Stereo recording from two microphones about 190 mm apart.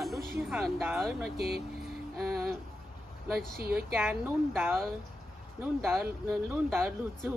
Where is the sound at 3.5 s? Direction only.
55° right (ahead or behind).